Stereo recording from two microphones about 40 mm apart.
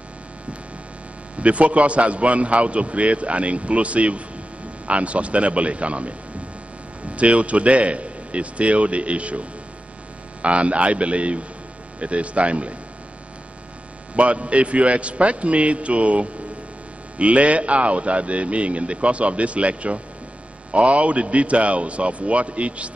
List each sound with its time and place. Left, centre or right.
1.4 s a man's voice: right
7.2 s a man's voice: right
14.1 s a man's voice: right